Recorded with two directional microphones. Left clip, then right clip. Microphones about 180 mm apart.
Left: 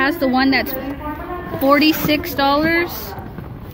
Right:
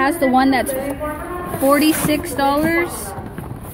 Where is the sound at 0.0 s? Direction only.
10° right (ahead or behind).